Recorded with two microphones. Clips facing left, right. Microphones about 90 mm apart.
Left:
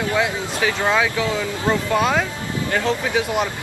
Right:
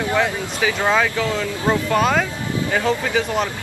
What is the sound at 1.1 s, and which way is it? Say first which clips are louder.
Speech: even; 20° left (ahead or behind).